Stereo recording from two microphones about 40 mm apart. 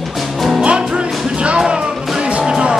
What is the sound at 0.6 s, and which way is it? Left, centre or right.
Music, right.